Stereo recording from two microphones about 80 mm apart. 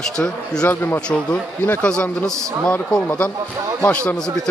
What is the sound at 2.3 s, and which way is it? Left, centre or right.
Speech, right.